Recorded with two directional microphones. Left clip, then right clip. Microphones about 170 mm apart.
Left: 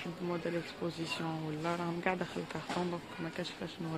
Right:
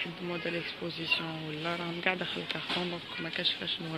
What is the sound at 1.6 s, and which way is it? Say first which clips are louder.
Speech: right 3 dB; 10° left (ahead or behind).